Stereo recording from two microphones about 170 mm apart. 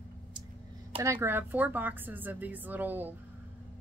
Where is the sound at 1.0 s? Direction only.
15° right (ahead or behind).